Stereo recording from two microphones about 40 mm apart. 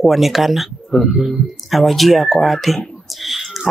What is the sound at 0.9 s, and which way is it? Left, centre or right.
Speech, centre.